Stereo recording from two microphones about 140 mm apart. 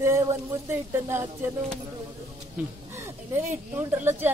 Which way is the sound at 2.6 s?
10° right (ahead or behind).